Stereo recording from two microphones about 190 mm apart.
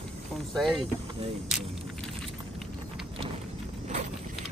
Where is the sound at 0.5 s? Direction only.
Centre (ahead or behind).